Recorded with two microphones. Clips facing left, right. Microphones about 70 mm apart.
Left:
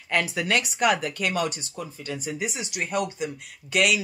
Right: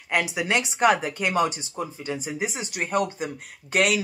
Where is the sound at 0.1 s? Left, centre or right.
Centre.